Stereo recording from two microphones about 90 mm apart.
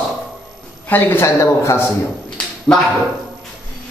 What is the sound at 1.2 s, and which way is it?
Speech, 30° left (ahead or behind).